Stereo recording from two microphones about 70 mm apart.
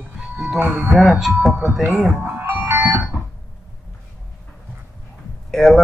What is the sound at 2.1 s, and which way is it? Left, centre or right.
Music, right.